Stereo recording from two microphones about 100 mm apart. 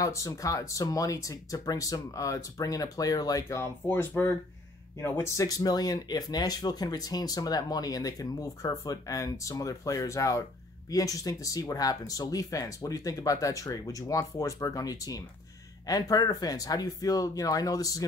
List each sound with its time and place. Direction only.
0.0 s speech: 35° left (ahead or behind)